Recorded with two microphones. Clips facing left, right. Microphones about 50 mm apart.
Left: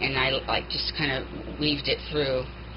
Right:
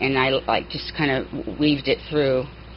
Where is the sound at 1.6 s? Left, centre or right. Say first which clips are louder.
Right 7 dB; centre.